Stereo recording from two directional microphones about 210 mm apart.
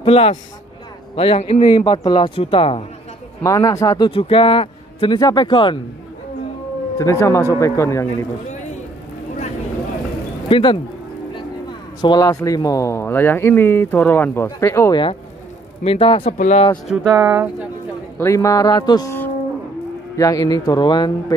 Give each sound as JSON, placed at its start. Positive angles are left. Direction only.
{"t": 0.0, "sound": "a man's voice", "side_deg": 30}
{"t": 3.4, "sound": "a man's voice", "side_deg": 15}
{"t": 7.0, "sound": "speech", "side_deg": 15}
{"t": 10.5, "sound": "a man's voice", "side_deg": 25}
{"t": 12.0, "sound": "speech", "side_deg": 20}
{"t": 15.8, "sound": "a man's voice", "side_deg": 25}
{"t": 17.0, "sound": "speech", "side_deg": -15}
{"t": 17.3, "sound": "speech", "side_deg": -5}
{"t": 18.2, "sound": "speech", "side_deg": 15}